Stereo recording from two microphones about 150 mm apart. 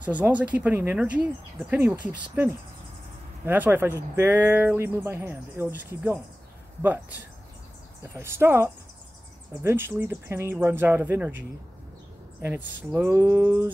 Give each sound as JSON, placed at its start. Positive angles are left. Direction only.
{"t": 0.0, "sound": "speech", "side_deg": -10}